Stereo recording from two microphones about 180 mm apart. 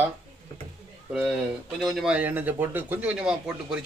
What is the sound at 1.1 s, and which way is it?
Speech, 5° right (ahead or behind).